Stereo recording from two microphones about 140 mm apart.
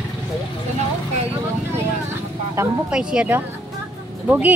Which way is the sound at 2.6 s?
20° right (ahead or behind).